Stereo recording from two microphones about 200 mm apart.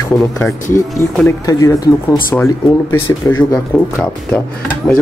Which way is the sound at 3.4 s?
20° left (ahead or behind).